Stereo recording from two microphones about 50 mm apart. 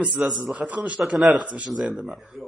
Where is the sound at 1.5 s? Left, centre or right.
Right.